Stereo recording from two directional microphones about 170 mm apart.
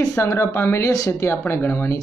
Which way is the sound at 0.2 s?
15° left (ahead or behind).